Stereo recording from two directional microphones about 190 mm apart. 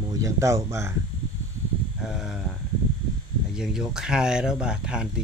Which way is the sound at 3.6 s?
5° right (ahead or behind).